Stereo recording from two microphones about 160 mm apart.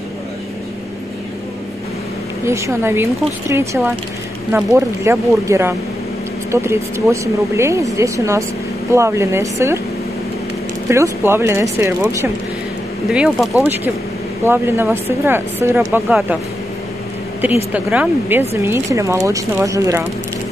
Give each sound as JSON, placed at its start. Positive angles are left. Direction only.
{"t": 2.4, "sound": "speech", "side_deg": -15}
{"t": 10.9, "sound": "speech", "side_deg": -15}
{"t": 13.1, "sound": "speech", "side_deg": -5}
{"t": 17.4, "sound": "speech", "side_deg": -10}